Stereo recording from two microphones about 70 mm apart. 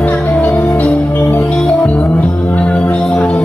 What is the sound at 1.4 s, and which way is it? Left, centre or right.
Music, centre.